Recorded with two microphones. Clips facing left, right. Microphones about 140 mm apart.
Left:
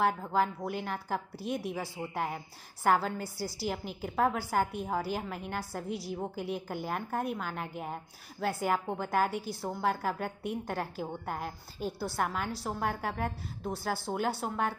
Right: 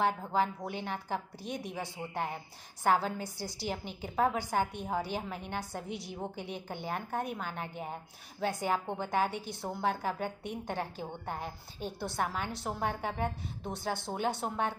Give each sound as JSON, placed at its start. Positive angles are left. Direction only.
{"t": 0.7, "sound": "a woman's voice", "side_deg": 5}